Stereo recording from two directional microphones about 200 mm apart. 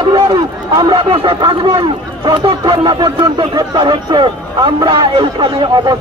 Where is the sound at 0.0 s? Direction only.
25° right (ahead or behind).